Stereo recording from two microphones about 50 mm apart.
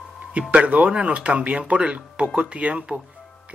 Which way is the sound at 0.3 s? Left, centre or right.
Right.